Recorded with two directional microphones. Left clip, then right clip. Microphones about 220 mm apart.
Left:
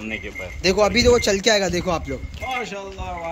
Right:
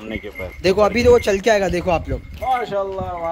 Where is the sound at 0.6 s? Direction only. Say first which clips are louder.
Right 2 dB; centre (ahead or behind).